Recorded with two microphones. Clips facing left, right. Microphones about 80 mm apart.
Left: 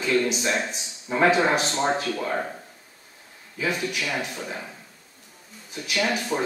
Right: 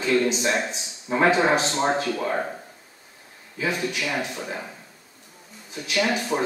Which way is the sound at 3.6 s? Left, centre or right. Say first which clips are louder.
Right 1 dB; centre.